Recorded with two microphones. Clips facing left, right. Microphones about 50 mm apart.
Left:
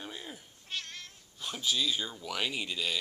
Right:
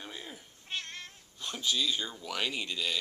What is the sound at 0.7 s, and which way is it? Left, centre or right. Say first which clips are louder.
Cat: right 1 dB; right.